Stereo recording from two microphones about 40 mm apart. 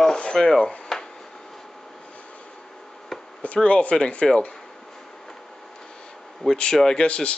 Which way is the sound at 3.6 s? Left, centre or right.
Left.